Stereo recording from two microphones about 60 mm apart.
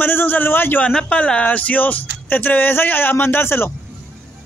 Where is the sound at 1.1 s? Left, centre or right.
Left.